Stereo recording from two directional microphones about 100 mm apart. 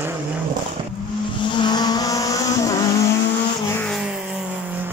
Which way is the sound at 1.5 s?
45° left (ahead or behind).